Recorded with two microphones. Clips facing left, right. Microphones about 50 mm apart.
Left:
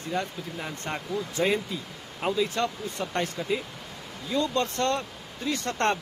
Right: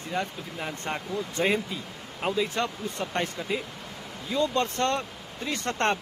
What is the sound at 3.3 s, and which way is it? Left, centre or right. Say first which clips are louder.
Speech: left 2 dB; centre.